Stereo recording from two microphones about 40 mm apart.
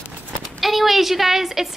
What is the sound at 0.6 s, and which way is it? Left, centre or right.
A woman's voice, centre.